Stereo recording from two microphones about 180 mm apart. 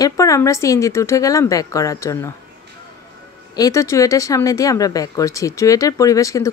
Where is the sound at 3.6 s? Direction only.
15° left (ahead or behind).